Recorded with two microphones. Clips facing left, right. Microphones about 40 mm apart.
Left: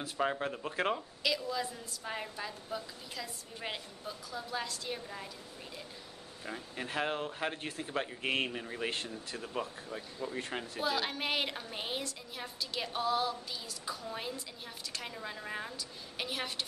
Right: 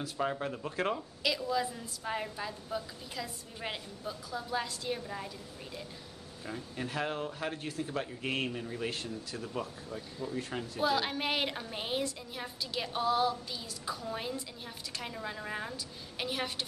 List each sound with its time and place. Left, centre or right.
0.0 s speech: centre
1.2 s a woman's voice: centre
6.4 s speech: centre
10.8 s a woman's voice: centre